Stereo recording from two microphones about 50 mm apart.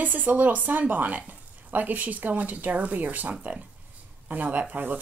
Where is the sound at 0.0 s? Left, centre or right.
Right.